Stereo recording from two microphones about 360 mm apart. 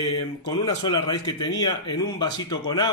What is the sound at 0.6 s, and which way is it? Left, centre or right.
Speech, centre.